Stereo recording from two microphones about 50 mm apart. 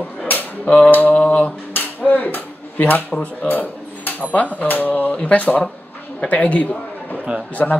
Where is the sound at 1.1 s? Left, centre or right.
Left.